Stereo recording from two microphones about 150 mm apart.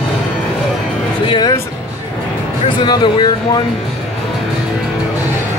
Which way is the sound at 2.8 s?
30° left (ahead or behind).